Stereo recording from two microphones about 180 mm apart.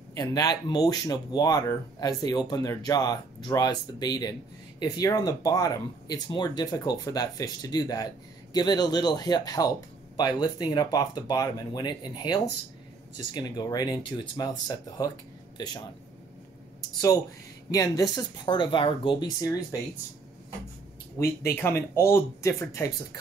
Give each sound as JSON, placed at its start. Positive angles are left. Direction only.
{"t": 0.1, "sound": "speech", "side_deg": 20}
{"t": 17.6, "sound": "speech", "side_deg": 20}
{"t": 21.2, "sound": "speech", "side_deg": 15}